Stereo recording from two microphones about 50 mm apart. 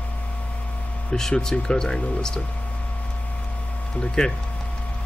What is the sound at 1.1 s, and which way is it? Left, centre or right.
Speech, centre.